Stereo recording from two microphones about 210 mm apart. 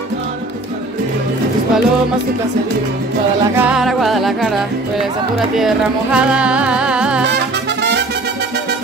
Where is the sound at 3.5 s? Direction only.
5° right (ahead or behind).